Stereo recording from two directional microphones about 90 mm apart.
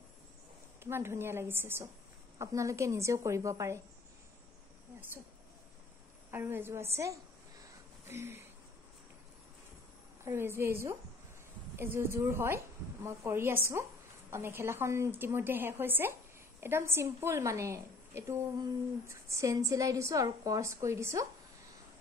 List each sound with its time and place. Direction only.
0.8 s a woman's voice: 25° right (ahead or behind)
6.3 s a woman's voice: 25° right (ahead or behind)
10.2 s a woman's voice: 25° right (ahead or behind)